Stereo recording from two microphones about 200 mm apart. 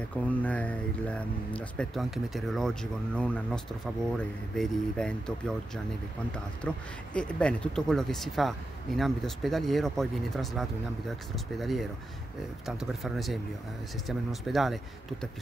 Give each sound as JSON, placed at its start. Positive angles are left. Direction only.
{"t": 0.3, "sound": "a man's voice", "side_deg": 5}
{"t": 7.2, "sound": "a man's voice", "side_deg": 5}